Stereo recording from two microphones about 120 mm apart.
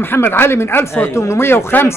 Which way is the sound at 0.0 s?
20° left (ahead or behind).